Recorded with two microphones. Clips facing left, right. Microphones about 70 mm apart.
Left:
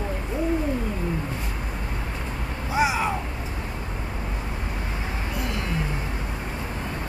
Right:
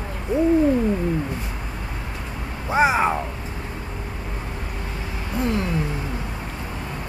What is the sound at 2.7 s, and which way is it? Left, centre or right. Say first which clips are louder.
Speech: right 5 dB; right.